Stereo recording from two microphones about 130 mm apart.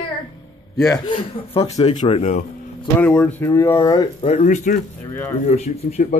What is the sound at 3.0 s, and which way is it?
Speech, 10° left (ahead or behind).